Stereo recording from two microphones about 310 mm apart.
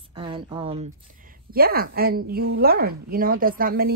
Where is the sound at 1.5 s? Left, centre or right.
Right.